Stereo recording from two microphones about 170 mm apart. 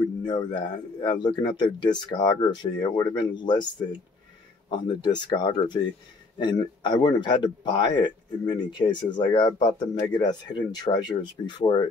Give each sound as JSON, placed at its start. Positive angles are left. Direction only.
{"t": 0.2, "sound": "speech", "side_deg": 25}
{"t": 4.6, "sound": "speech", "side_deg": 25}